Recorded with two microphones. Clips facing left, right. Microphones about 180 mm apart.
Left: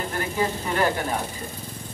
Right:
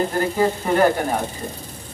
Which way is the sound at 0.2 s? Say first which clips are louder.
Right 3 dB; 40° right (ahead or behind).